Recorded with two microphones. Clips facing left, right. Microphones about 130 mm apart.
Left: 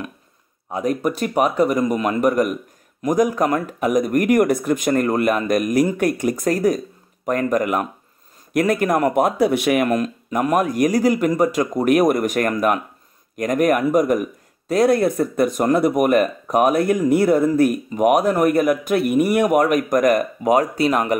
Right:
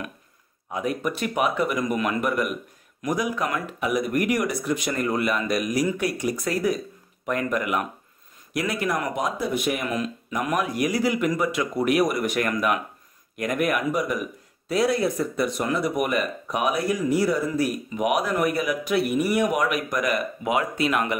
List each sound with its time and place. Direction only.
0.7 s speech: 35° left (ahead or behind); by 9.8 s 75° left (ahead or behind)
9.8 s speech: 50° left (ahead or behind)